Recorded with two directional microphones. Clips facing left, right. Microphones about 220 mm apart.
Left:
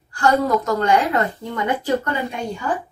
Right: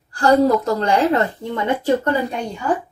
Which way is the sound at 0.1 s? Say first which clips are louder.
Right 4 dB; 30° right (ahead or behind).